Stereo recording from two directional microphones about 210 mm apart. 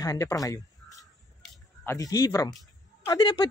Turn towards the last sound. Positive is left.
turn(degrees=20)  # may be behind; listen again after turning